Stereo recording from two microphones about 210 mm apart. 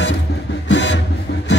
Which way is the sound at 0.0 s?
55° left (ahead or behind).